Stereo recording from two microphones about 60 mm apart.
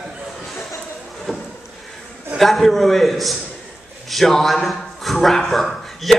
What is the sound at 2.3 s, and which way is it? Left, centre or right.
A man's voice, centre.